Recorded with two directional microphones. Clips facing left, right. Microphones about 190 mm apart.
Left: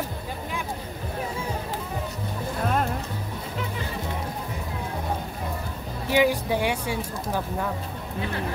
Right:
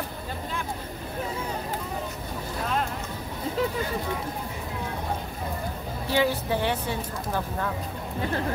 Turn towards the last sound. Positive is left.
turn(degrees=10)  # may be behind; listen again after turning